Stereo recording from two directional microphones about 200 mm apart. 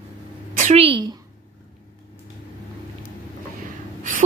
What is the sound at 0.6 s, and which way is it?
Speech, 35° right (ahead or behind).